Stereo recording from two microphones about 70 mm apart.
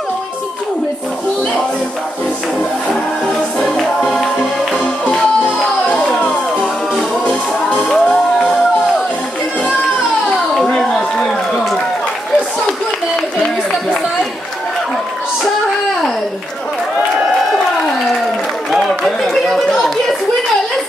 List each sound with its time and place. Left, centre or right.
3.5 s music: centre
5.6 s music: centre
7.9 s music: centre
10.3 s a sound: centre
12.6 s a sound: centre
18.7 s chatter: centre